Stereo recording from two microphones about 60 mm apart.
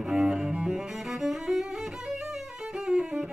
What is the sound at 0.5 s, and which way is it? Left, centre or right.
Music, centre.